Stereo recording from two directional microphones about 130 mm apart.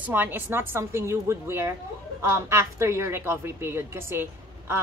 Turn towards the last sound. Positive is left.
turn(degrees=-20)  # may be behind; listen again after turning